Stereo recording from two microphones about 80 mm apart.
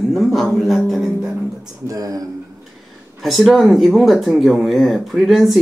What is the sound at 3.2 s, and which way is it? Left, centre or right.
Speech, centre.